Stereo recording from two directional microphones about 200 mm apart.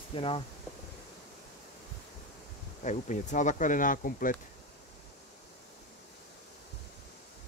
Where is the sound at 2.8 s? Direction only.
35° left (ahead or behind).